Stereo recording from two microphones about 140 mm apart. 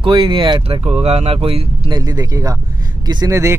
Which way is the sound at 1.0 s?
45° right (ahead or behind).